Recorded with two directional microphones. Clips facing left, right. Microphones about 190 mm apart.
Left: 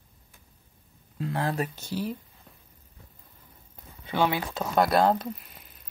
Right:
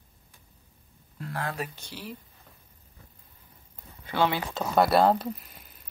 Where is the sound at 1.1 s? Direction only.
20° left (ahead or behind).